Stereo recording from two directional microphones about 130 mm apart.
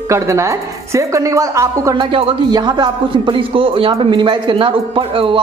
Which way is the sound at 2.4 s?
35° right (ahead or behind).